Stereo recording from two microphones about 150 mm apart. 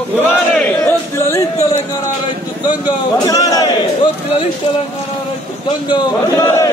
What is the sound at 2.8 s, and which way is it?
Speech, 25° left (ahead or behind).